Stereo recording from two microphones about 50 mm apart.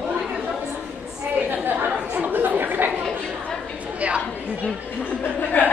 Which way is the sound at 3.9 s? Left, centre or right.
Right.